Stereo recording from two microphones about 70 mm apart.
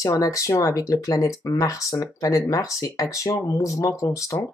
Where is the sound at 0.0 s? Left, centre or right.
Left.